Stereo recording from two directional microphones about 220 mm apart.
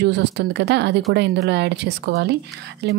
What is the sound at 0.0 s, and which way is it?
Speech, 50° right (ahead or behind).